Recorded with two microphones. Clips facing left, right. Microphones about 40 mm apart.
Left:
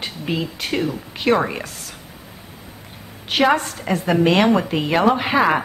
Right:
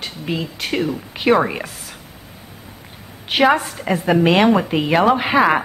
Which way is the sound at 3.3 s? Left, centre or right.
Centre.